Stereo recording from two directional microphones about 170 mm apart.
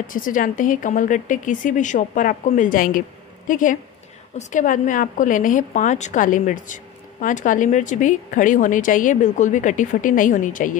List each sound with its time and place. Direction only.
0.0 s a woman's voice: 50° left (ahead or behind)